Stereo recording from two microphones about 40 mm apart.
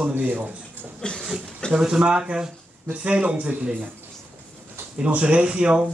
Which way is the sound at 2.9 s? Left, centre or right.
Right.